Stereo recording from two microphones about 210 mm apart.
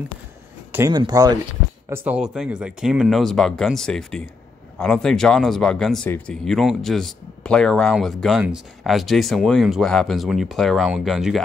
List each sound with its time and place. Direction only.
0.7 s speech: 15° right (ahead or behind)